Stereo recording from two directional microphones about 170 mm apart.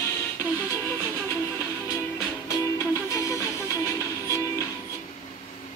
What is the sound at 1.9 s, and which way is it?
Music, 20° left (ahead or behind).